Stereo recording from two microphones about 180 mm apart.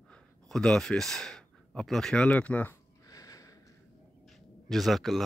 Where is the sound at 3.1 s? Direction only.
20° left (ahead or behind).